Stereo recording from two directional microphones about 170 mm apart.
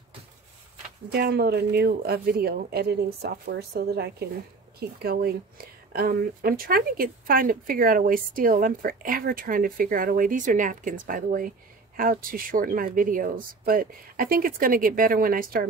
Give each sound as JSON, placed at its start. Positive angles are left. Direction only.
{"t": 1.1, "sound": "speech", "side_deg": -70}